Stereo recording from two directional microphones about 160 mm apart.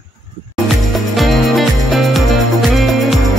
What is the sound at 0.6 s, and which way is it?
Music, centre (ahead or behind).